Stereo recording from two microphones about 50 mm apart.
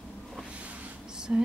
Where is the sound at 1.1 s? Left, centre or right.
Centre.